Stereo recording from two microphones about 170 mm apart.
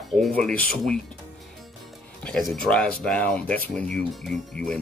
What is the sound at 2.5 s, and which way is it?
Speech, 5° left (ahead or behind).